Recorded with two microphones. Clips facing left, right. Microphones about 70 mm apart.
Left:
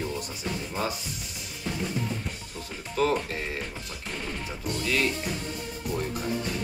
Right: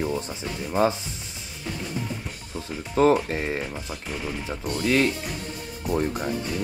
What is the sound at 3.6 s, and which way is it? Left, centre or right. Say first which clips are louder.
Speech: right 4 dB; centre.